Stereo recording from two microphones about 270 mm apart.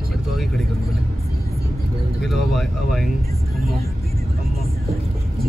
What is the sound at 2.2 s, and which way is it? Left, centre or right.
Vehicle, centre.